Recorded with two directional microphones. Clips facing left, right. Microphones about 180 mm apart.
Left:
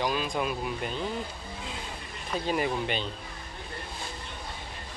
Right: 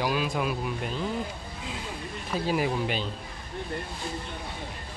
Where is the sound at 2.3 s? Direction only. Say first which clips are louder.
Right 1 dB; 5° right (ahead or behind).